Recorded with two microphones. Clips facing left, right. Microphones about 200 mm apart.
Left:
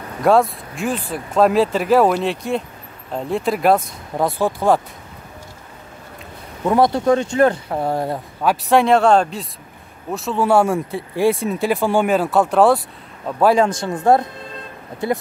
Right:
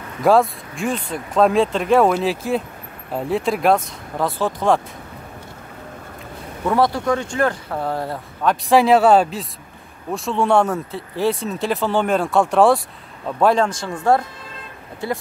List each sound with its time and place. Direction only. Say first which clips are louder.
0.2 s speech: even; centre (ahead or behind)
6.7 s speech: left 3 dB; 20° left (ahead or behind)
8.6 s speech: right 1 dB; centre (ahead or behind)
13.7 s speech: left 3 dB; 20° left (ahead or behind)